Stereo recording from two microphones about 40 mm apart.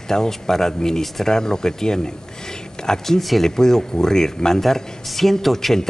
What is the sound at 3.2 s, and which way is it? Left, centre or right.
Speech, centre.